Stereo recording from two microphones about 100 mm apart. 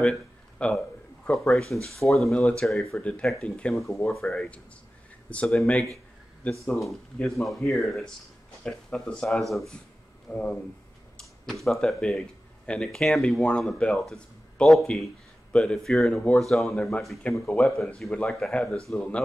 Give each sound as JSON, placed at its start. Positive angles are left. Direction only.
{"t": 0.0, "sound": "speech", "side_deg": 10}
{"t": 3.0, "sound": "speech", "side_deg": 10}
{"t": 3.7, "sound": "speech", "side_deg": 0}
{"t": 6.6, "sound": "speech", "side_deg": 30}
{"t": 7.7, "sound": "speech", "side_deg": 0}
{"t": 10.3, "sound": "speech", "side_deg": 10}
{"t": 11.6, "sound": "speech", "side_deg": 0}
{"t": 17.5, "sound": "speech", "side_deg": 15}
{"t": 17.7, "sound": "speech", "side_deg": 5}